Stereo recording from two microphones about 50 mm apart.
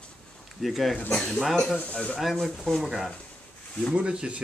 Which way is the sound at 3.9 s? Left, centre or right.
Centre.